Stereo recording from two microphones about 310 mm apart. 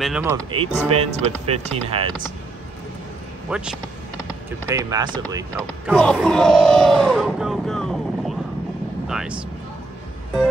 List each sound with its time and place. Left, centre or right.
0.0 s speech: centre
0.5 s speech: centre
3.4 s speech: centre
5.9 s speech: centre
9.0 s vehicle: centre